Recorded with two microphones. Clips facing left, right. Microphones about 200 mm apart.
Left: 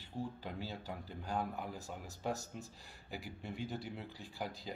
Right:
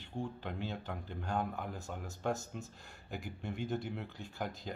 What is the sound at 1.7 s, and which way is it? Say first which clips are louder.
Speech: right 3 dB; 35° left (ahead or behind).